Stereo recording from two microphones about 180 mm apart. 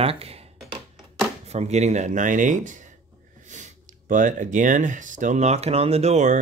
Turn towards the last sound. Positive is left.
turn(degrees=-40)  # may be behind; listen again after turning